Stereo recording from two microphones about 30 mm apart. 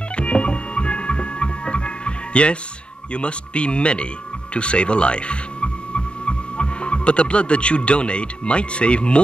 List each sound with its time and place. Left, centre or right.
0.1 s music: left
3.1 s a man's voice: left